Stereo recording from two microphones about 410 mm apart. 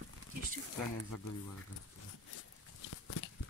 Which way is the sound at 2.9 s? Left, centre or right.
Left.